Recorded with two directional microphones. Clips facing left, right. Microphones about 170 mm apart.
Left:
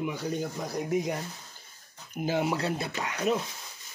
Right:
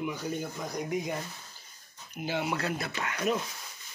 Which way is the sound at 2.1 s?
45° left (ahead or behind).